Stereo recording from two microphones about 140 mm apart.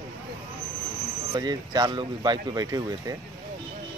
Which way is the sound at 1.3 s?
30° right (ahead or behind).